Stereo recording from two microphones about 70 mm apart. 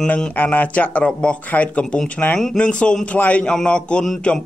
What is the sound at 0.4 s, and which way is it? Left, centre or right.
A man's voice, left.